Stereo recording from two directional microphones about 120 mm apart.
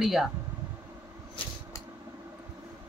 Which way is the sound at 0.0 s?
Centre (ahead or behind).